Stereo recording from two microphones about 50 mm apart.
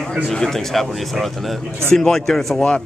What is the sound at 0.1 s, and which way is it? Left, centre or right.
Speech, centre.